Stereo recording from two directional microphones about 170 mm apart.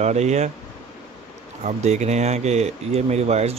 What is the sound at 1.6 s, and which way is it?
Speech, 40° right (ahead or behind).